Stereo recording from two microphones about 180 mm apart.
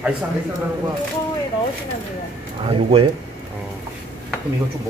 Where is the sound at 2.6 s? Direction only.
30° right (ahead or behind).